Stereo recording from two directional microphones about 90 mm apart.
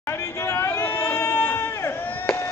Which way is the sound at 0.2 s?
35° left (ahead or behind).